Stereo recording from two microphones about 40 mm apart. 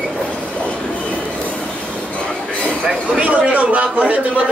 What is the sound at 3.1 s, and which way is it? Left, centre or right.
A man's voice, right.